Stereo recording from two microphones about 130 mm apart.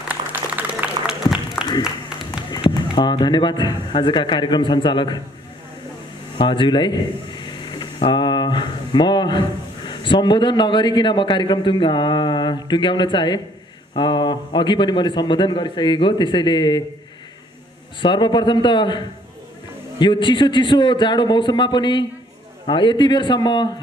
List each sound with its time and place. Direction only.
0.1 s applause: 15° right (ahead or behind)
2.5 s a man's voice: 35° left (ahead or behind)
6.4 s a man's voice: 40° left (ahead or behind)
18.0 s a man's voice: 35° left (ahead or behind)